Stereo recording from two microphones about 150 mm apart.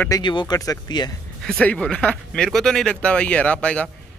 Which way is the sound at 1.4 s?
5° left (ahead or behind).